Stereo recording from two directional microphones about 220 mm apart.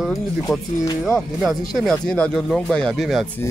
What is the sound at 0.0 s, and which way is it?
Speech, centre (ahead or behind).